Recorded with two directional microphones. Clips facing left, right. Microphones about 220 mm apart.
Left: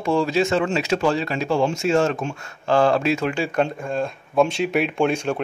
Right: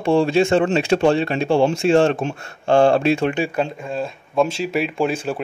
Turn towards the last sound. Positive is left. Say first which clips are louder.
# even
turn(degrees=-5)  # may be behind; listen again after turning